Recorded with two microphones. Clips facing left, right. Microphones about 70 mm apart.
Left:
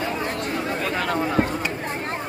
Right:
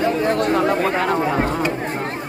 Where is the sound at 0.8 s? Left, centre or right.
Right.